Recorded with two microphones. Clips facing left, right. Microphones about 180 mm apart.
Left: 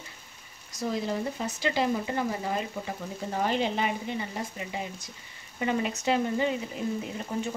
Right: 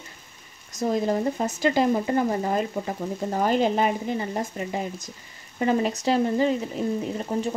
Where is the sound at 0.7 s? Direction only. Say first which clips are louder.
Right 6 dB; 45° right (ahead or behind).